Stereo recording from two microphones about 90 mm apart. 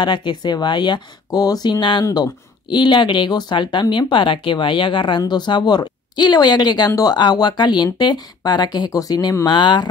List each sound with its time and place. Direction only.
0.0 s speech: 55° left (ahead or behind)
5.3 s speech: 55° left (ahead or behind)